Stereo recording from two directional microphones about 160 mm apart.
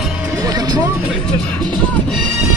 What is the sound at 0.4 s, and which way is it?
Music, 20° right (ahead or behind).